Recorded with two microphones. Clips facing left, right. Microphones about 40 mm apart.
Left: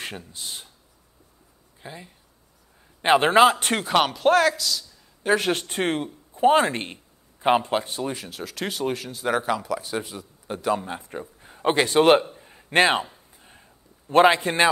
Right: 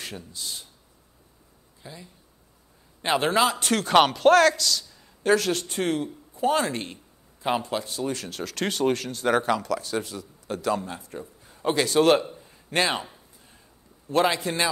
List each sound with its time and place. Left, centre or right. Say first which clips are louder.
0.0 s speech: left 2 dB; left
1.8 s speech: left 3 dB; left
3.9 s a man's voice: right 2 dB; centre
5.3 s speech: even; left
8.0 s speech: even; centre
9.6 s a man's voice: even; centre; by 12.3 s left
12.4 s a sound: left 6 dB; left